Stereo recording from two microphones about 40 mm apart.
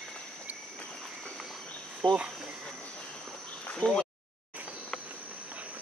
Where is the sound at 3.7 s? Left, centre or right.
Left.